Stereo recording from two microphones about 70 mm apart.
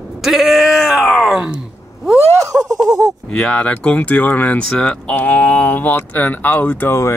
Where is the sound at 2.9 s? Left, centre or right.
Right.